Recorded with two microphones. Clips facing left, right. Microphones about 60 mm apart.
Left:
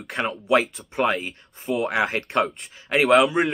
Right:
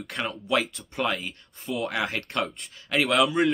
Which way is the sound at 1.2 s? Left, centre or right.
Left.